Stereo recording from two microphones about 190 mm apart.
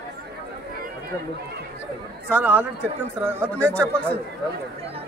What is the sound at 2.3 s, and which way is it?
Speech, 10° right (ahead or behind).